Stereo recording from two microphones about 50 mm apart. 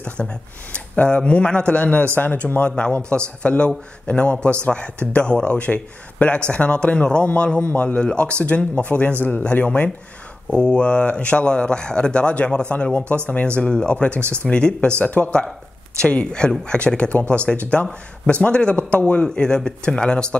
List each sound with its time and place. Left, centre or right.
0.2 s speech: left
10.5 s speech: centre